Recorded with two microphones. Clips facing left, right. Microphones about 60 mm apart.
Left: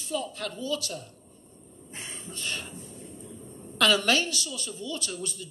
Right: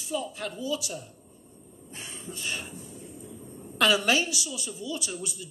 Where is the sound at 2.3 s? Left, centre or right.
Centre.